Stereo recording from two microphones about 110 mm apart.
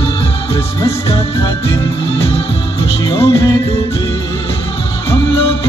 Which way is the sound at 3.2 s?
25° left (ahead or behind).